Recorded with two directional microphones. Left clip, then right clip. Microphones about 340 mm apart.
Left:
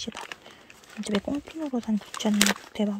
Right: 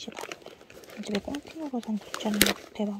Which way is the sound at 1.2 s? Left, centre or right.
Left.